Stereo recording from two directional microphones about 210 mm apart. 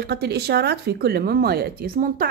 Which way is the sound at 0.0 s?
50° right (ahead or behind).